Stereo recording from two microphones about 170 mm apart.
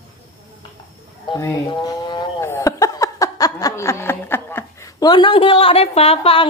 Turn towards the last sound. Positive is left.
turn(degrees=35)  # may be behind; listen again after turning